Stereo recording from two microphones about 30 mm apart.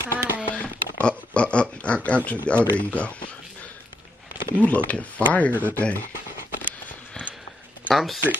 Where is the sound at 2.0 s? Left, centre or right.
Left.